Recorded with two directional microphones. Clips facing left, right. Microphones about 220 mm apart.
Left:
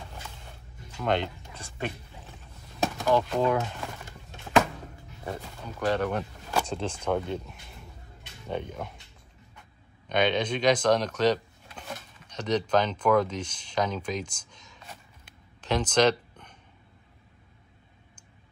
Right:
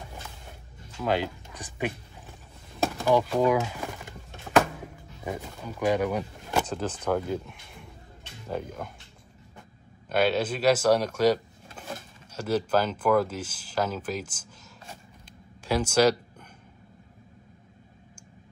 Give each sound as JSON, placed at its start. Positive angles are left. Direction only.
{"t": 0.9, "sound": "speech", "side_deg": -5}
{"t": 1.5, "sound": "speech", "side_deg": -15}
{"t": 3.0, "sound": "speech", "side_deg": -10}
{"t": 10.0, "sound": "speech", "side_deg": -5}
{"t": 15.6, "sound": "a sound", "side_deg": -10}